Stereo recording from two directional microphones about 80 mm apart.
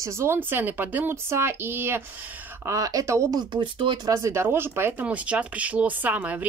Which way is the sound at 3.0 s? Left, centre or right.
Right.